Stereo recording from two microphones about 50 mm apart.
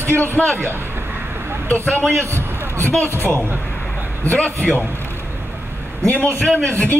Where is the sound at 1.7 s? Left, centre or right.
Left.